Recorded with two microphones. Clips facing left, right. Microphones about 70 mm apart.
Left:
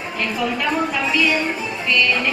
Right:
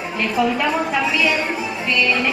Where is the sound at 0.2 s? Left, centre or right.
Centre.